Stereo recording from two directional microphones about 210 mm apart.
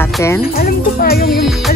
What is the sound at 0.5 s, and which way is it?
Speech, 45° left (ahead or behind).